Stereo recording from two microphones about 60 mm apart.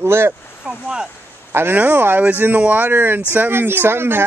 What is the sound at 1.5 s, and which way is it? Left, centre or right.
Speech, right.